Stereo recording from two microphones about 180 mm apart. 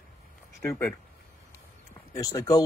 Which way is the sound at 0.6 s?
10° left (ahead or behind).